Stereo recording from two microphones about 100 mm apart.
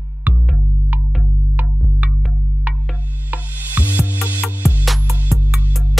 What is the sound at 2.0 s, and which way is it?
Music, 15° right (ahead or behind).